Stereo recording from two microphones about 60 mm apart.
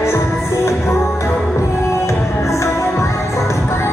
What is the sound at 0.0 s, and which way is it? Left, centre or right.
Music, left.